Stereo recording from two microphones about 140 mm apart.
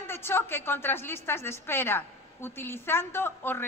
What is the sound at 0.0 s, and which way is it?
A woman's voice, 15° left (ahead or behind).